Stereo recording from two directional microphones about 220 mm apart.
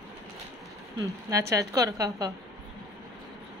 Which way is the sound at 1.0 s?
15° right (ahead or behind).